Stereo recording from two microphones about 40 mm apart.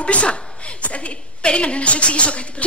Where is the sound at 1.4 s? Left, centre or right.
Left.